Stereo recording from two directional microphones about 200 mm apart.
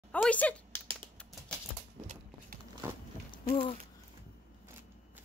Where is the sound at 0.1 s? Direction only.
5° left (ahead or behind).